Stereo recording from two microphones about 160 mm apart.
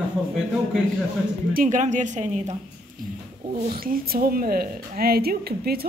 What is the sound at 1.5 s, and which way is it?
A woman's voice, 55° right (ahead or behind).